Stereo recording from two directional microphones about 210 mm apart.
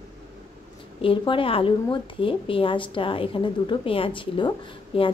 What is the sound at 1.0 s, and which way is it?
A woman's voice, 25° left (ahead or behind).